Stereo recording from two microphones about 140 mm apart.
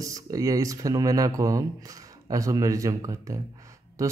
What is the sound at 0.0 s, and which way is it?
A man's voice, 25° right (ahead or behind).